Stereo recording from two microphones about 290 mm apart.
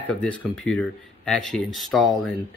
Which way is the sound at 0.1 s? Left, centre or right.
Centre.